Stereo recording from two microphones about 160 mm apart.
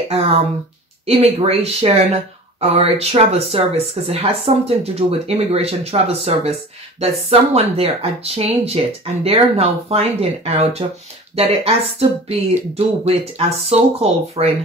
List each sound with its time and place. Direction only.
1.0 s speech: 40° right (ahead or behind)